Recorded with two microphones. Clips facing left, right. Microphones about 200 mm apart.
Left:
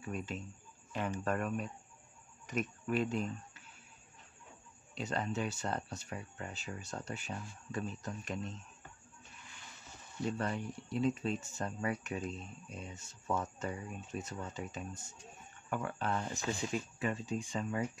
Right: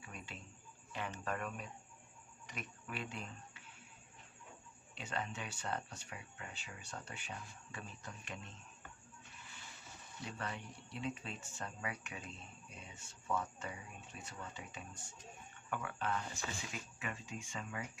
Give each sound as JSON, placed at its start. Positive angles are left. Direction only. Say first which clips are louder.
{"t": 0.0, "sound": "speech", "louder": "left 11 dB", "side_deg": 45}
{"t": 4.9, "sound": "speech", "louder": "left 7 dB", "side_deg": 40}
{"t": 10.2, "sound": "speech", "louder": "left 9 dB", "side_deg": 40}